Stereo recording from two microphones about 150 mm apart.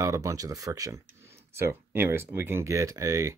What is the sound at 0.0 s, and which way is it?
Speech, 20° right (ahead or behind).